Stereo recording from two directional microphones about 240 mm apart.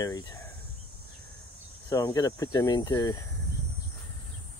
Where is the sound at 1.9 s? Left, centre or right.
Centre.